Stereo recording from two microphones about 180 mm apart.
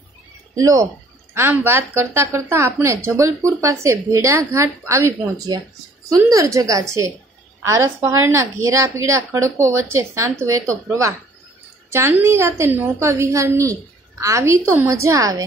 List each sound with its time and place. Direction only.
0.6 s a woman's voice: 20° right (ahead or behind)